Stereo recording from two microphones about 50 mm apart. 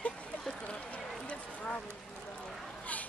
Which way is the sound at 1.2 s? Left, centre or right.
Left.